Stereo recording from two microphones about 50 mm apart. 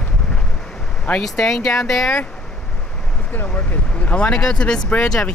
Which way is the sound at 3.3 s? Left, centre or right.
Left.